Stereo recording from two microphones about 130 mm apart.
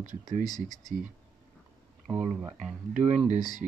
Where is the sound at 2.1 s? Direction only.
15° right (ahead or behind).